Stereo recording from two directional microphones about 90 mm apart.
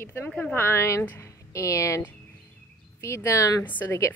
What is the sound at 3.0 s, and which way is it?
Speech, 35° left (ahead or behind).